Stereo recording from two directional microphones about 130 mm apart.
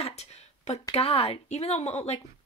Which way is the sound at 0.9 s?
50° left (ahead or behind).